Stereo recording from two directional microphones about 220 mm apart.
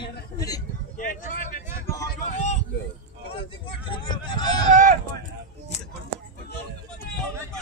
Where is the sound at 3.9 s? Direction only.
20° left (ahead or behind).